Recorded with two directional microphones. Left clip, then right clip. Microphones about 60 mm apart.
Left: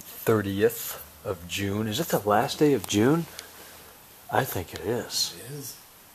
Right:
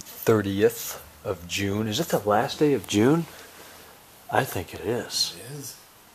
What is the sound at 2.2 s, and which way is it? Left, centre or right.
Speech, left.